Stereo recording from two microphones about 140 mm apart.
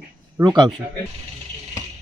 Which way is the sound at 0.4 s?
30° right (ahead or behind).